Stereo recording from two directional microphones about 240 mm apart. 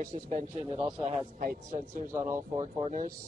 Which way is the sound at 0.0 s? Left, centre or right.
Right.